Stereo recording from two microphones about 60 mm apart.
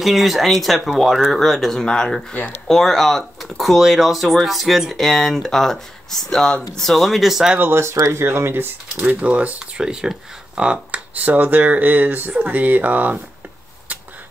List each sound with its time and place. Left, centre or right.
0.0 s speech: centre
7.6 s speech: right
9.0 s speech: right